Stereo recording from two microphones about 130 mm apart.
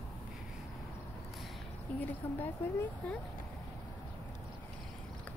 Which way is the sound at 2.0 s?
15° left (ahead or behind).